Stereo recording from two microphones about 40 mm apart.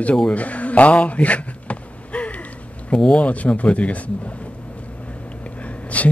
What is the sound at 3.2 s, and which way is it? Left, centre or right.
Speech, left.